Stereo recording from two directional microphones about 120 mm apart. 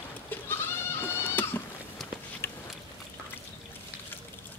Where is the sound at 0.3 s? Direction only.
20° left (ahead or behind).